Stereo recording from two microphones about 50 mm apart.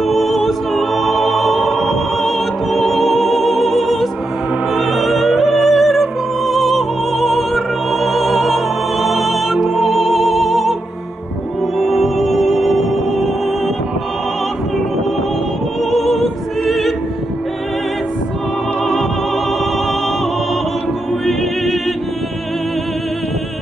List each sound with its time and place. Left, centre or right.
0.0 s music: centre
11.8 s music: centre
15.9 s music: centre